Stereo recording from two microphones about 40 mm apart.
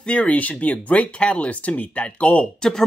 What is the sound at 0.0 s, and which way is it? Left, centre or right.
Speech, left.